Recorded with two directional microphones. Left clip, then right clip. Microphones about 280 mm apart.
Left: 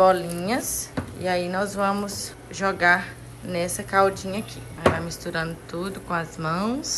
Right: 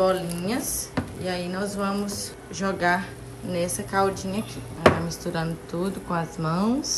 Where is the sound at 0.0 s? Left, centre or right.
Centre.